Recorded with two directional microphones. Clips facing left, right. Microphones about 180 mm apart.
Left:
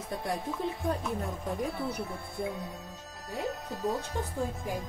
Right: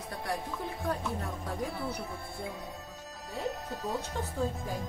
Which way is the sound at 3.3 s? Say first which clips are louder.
Left 1 dB; centre (ahead or behind).